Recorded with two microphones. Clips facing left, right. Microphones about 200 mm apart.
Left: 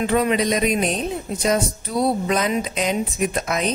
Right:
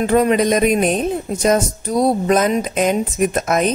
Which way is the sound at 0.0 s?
45° right (ahead or behind).